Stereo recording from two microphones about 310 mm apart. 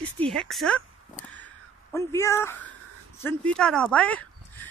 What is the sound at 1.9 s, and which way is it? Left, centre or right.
A woman's voice, centre.